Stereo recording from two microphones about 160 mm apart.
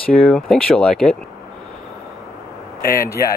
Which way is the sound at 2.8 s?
65° left (ahead or behind).